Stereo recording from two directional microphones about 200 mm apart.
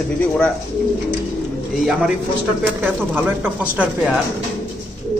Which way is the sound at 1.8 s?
Centre (ahead or behind).